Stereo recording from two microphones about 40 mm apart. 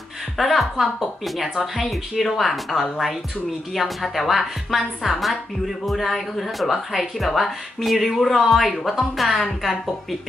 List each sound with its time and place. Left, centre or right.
0.4 s a woman's voice: centre